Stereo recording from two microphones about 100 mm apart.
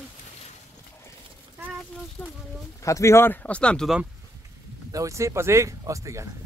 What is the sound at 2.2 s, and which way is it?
Speech, 20° left (ahead or behind).